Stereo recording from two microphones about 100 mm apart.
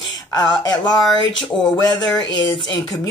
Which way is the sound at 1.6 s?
45° left (ahead or behind).